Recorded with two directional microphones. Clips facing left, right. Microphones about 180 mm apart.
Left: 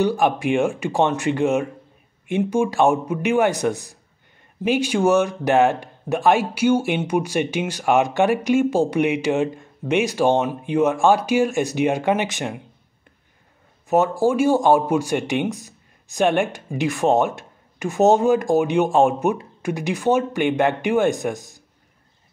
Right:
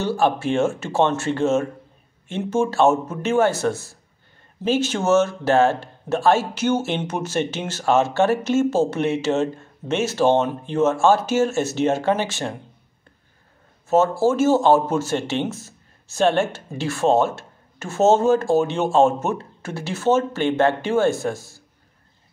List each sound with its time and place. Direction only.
0.0 s speech: 15° left (ahead or behind)
13.8 s speech: 15° left (ahead or behind)